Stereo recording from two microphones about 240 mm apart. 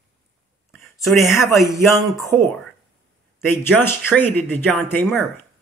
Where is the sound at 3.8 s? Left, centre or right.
Centre.